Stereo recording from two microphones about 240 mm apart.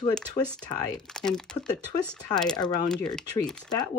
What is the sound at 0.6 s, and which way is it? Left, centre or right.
Speech, centre.